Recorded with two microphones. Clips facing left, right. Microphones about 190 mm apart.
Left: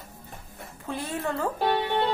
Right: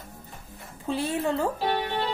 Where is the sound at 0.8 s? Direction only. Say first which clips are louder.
Right 4 dB; 25° right (ahead or behind).